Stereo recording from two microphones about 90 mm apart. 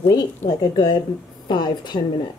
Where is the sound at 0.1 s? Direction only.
50° left (ahead or behind).